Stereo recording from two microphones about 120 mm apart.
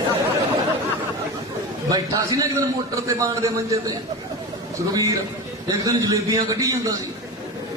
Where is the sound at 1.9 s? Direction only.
30° right (ahead or behind).